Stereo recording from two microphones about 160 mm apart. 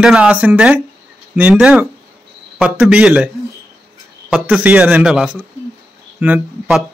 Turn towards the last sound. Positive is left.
turn(degrees=-10)  # may be behind; listen again after turning